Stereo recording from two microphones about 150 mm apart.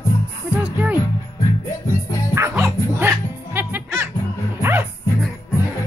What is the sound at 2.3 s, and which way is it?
Music, 20° right (ahead or behind).